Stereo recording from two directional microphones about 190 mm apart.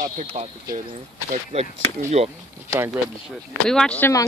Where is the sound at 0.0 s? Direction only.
35° right (ahead or behind).